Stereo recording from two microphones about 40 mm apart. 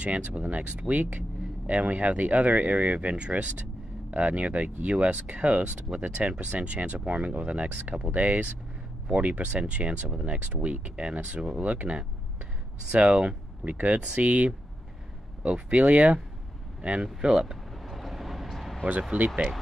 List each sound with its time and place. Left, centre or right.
0.0 s speech: right
8.1 s speech: right
11.6 s speech: right
17.0 s speech: centre
17.8 s vehicle: centre
19.1 s speech: right